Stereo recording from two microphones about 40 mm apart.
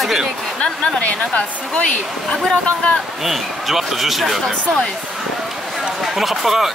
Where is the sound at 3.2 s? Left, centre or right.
Centre.